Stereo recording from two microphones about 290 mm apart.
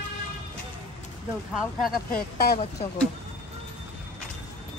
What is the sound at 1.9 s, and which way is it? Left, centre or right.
Speech, left.